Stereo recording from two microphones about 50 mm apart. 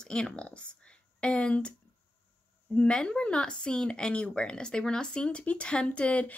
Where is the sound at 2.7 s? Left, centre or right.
Centre.